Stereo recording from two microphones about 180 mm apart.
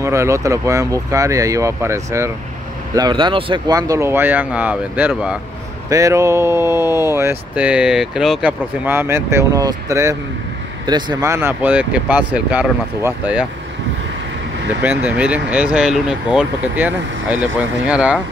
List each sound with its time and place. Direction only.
0.0 s speech: 15° right (ahead or behind)
5.9 s speech: 15° right (ahead or behind)
14.8 s speech: 10° right (ahead or behind)